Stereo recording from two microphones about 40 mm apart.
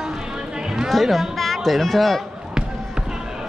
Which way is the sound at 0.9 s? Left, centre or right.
Centre.